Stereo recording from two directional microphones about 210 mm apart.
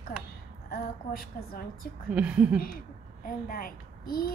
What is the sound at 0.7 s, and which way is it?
A woman's voice, 45° left (ahead or behind).